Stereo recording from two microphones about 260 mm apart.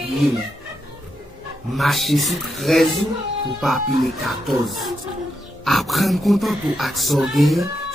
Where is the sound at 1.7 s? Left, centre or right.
Centre.